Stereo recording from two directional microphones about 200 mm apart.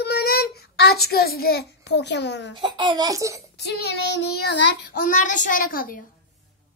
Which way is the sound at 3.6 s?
55° left (ahead or behind).